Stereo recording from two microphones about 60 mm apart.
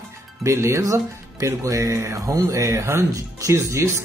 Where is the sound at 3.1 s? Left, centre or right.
Right.